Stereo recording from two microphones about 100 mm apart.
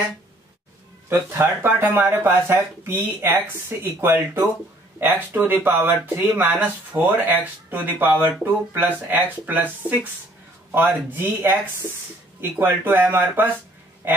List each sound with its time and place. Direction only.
1.0 s speech: 20° right (ahead or behind)